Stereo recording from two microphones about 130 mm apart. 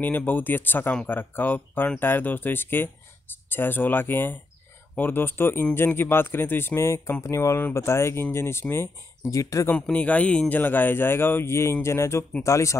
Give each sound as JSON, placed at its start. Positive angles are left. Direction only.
{"t": 0.0, "sound": "speech", "side_deg": 15}
{"t": 9.7, "sound": "speech", "side_deg": 10}